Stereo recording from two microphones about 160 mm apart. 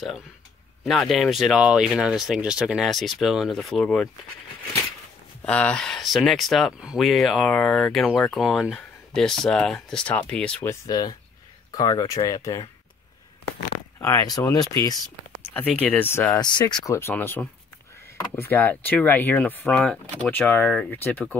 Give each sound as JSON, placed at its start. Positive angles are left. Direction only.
{"t": 0.8, "sound": "speech", "side_deg": 0}
{"t": 5.4, "sound": "speech", "side_deg": 5}
{"t": 13.9, "sound": "speech", "side_deg": 15}
{"t": 15.8, "sound": "speech", "side_deg": 10}
{"t": 16.3, "sound": "speech", "side_deg": 25}